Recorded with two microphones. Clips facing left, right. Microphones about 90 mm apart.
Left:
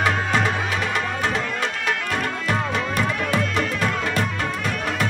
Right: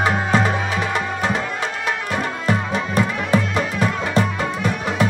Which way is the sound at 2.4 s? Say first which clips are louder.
Right 2 dB; 35° right (ahead or behind).